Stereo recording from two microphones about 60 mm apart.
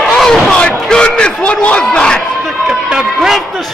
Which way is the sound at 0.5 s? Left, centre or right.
Centre.